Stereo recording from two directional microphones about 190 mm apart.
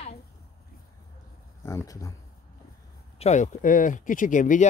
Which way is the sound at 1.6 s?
15° left (ahead or behind).